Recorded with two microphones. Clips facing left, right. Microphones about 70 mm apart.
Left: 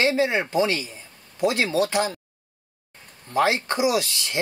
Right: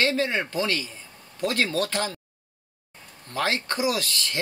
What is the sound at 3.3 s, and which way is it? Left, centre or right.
Speech, centre.